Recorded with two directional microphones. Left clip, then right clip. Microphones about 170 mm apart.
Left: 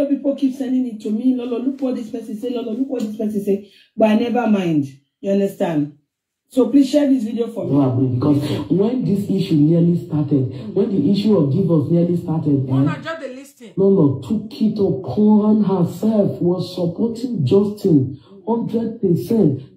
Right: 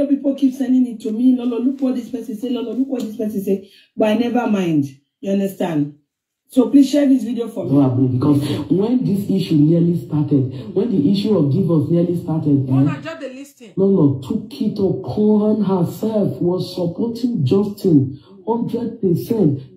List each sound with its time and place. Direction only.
0.2 s speech: 55° right (ahead or behind)
12.6 s a man's voice: 5° left (ahead or behind)
13.7 s speech: 55° right (ahead or behind)